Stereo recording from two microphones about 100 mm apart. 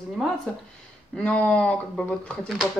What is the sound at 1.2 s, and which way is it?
Speech, 10° left (ahead or behind).